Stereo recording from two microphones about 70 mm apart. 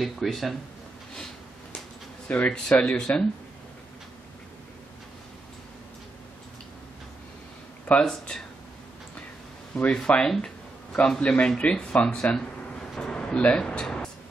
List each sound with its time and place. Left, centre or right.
0.0 s speech: centre
1.1 s a sound: centre
2.2 s speech: left
8.0 s speech: centre
9.8 s speech: centre
12.9 s a sound: centre